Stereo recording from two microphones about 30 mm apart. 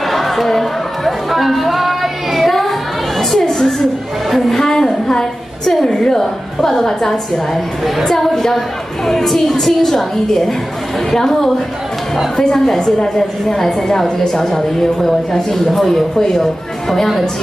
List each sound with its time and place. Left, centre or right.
0.1 s chatter: centre
0.5 s music: centre
3.2 s children playing: centre
4.3 s a sound: centre
4.6 s a sound: centre
6.1 s a woman's voice: centre
12.7 s a woman's voice: centre